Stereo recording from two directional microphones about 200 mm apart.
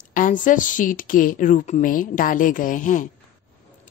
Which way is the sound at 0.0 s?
40° left (ahead or behind).